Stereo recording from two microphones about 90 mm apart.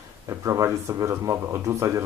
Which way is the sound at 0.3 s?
35° right (ahead or behind).